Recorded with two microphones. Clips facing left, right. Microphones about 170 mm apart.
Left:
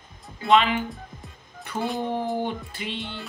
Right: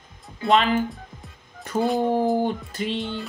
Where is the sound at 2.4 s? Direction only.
45° right (ahead or behind).